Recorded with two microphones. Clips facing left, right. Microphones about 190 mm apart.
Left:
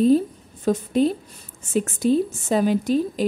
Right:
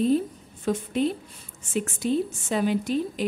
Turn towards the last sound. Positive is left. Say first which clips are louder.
# left 5 dB
turn(degrees=40)  # may be behind; listen again after turning